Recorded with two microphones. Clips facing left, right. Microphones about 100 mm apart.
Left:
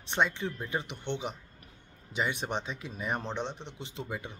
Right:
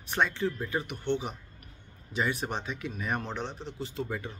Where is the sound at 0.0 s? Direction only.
20° left (ahead or behind).